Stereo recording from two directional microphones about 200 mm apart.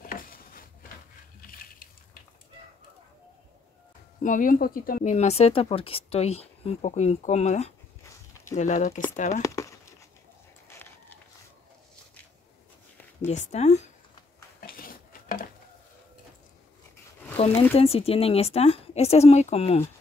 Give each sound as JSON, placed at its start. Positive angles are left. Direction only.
{"t": 0.0, "sound": "a sound", "side_deg": 45}
{"t": 4.2, "sound": "speech", "side_deg": 40}
{"t": 9.4, "sound": "crumpling", "side_deg": 15}
{"t": 10.7, "sound": "a sound", "side_deg": 10}
{"t": 13.2, "sound": "speech", "side_deg": 35}
{"t": 14.7, "sound": "dishes", "side_deg": 45}
{"t": 17.6, "sound": "speech", "side_deg": 30}